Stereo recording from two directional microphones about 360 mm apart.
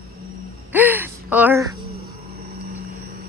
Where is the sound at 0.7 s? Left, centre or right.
Centre.